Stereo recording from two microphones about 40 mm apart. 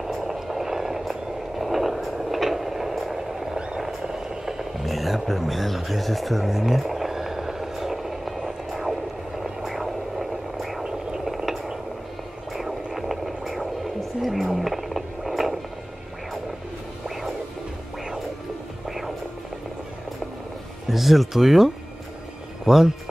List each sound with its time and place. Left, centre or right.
0.0 s vehicle: centre
3.5 s vehicle: right; by 10.8 s centre
10.9 s a sound: centre
18.9 s music: centre
20.9 s speech: centre